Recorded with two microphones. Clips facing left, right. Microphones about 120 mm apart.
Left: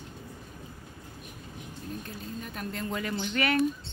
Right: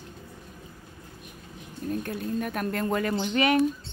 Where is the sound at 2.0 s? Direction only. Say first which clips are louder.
Right 9 dB; 65° right (ahead or behind).